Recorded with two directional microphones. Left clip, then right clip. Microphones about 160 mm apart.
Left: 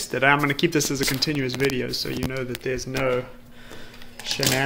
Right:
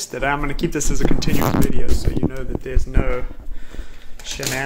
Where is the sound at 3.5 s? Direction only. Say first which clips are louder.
Left 1 dB; 5° right (ahead or behind).